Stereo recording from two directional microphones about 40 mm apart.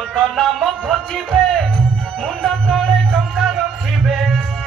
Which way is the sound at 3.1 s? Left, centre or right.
Centre.